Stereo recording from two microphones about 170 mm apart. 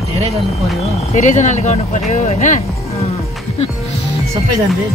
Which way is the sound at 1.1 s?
45° left (ahead or behind).